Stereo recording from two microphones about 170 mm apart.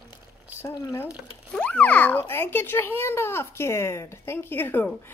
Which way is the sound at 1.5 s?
10° left (ahead or behind).